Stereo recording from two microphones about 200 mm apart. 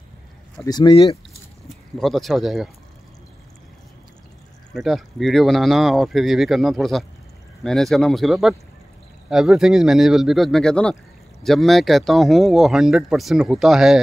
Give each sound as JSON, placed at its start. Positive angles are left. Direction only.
{"t": 0.7, "sound": "speech", "side_deg": 25}
{"t": 2.0, "sound": "speech", "side_deg": 0}
{"t": 4.7, "sound": "speech", "side_deg": 0}